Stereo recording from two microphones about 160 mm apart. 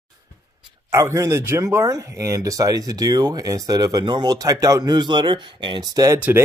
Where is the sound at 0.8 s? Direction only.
20° right (ahead or behind).